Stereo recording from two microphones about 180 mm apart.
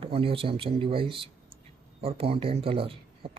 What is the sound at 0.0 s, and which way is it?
Speech, 30° right (ahead or behind).